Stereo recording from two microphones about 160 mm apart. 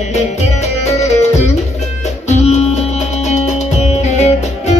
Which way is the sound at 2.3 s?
45° left (ahead or behind).